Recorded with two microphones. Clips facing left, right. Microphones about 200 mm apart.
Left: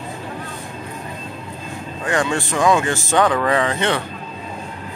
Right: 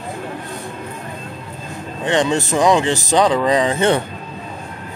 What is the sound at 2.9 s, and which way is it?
Speech, 35° right (ahead or behind).